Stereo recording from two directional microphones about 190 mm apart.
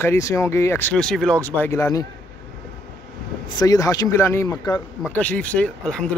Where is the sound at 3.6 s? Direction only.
20° left (ahead or behind).